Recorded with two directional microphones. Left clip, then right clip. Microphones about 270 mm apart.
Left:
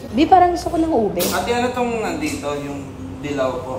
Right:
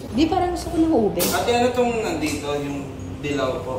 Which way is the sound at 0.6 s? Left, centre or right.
Centre.